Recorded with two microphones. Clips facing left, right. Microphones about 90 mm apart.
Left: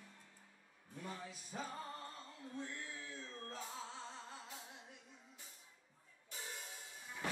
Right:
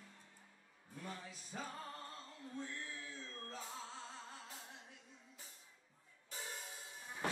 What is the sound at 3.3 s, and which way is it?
Music, 15° left (ahead or behind).